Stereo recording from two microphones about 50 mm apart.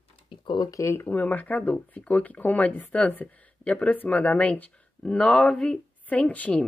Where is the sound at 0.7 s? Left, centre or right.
Left.